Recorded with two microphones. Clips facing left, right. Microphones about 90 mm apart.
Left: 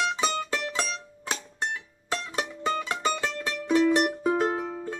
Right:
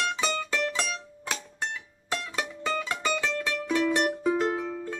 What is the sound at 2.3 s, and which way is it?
Music, 25° left (ahead or behind).